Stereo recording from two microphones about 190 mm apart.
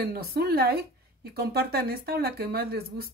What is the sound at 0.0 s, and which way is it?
Speech, 55° right (ahead or behind).